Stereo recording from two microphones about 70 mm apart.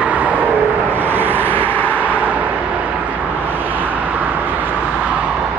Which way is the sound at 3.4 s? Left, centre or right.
Right.